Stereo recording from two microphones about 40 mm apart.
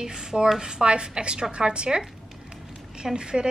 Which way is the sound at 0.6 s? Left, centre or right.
Right.